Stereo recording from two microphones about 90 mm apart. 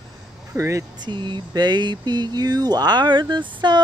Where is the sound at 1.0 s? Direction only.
60° right (ahead or behind).